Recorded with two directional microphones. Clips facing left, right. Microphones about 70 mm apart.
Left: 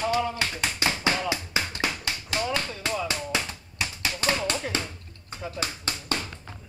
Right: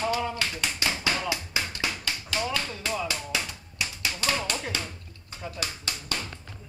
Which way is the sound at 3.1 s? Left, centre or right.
Left.